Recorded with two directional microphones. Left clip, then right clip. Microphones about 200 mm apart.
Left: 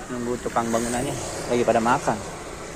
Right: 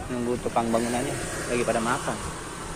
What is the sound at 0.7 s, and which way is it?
A man's voice, 15° left (ahead or behind).